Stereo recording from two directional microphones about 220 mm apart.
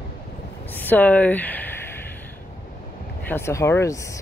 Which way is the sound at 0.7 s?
10° left (ahead or behind).